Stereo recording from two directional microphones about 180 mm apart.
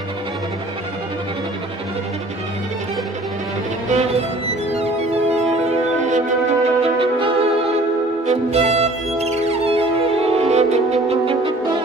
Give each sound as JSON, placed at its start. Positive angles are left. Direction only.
{"t": 4.7, "sound": "music", "side_deg": -35}